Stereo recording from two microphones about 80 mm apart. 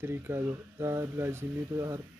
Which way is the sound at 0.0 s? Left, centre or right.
Right.